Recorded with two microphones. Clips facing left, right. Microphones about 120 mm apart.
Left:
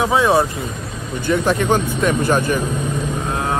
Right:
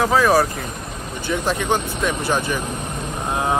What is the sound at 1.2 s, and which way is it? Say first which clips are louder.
Speech: left 4 dB; 55° left (ahead or behind).